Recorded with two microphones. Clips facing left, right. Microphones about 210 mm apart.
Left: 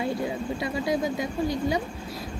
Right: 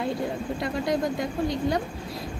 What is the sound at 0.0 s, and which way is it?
Speech, centre (ahead or behind).